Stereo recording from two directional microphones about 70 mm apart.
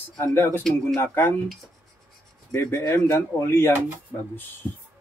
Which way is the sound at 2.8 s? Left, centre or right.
Left.